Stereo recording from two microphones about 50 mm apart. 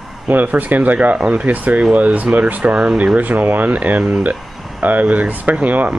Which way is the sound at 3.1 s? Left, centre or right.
Right.